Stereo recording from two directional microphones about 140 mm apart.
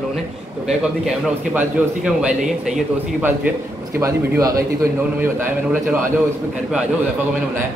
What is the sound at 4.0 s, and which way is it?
Speech, 25° right (ahead or behind).